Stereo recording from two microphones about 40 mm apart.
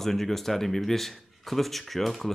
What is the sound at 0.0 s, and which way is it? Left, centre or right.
Speech, centre.